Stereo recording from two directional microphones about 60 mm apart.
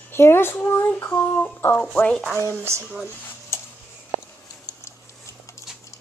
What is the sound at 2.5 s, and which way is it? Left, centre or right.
Speech, right.